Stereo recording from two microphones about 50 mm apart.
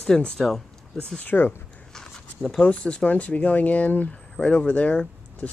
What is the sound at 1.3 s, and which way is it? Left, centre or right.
Speech, left.